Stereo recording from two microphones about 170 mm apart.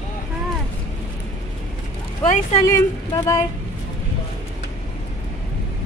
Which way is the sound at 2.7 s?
20° left (ahead or behind).